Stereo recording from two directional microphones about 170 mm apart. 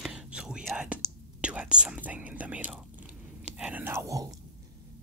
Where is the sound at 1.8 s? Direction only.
10° right (ahead or behind).